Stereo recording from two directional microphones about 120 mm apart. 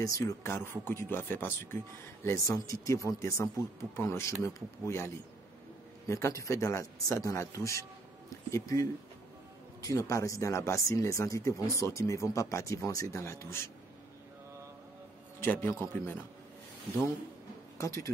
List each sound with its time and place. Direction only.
0.0 s a man's voice: 25° left (ahead or behind)
15.4 s speech: 20° left (ahead or behind)
17.7 s speech: 25° left (ahead or behind)